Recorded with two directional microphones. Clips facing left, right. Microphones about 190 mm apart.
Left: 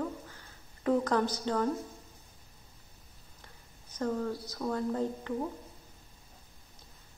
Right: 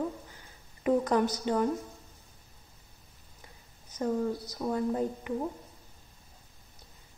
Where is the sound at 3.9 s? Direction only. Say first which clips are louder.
Right 3 dB; 15° right (ahead or behind).